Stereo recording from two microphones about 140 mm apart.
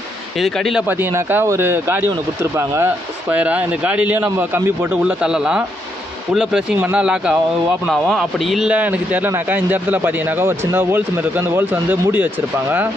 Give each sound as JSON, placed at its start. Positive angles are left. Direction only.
{"t": 0.4, "sound": "speech", "side_deg": 0}
{"t": 0.8, "sound": "speech", "side_deg": -15}